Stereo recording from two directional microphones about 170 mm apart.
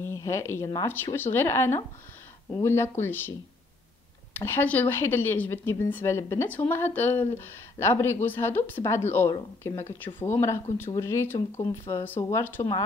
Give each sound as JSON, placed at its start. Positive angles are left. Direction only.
{"t": 0.0, "sound": "a woman's voice", "side_deg": 15}